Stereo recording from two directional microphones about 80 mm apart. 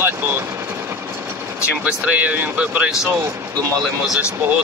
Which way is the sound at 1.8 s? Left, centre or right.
Centre.